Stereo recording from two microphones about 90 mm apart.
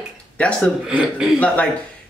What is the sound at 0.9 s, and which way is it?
Speech, 15° right (ahead or behind).